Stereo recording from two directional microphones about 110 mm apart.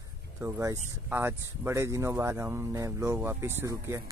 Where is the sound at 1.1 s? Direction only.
20° right (ahead or behind).